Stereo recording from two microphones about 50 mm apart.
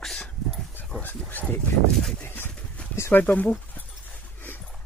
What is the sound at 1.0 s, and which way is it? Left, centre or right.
Speech, left.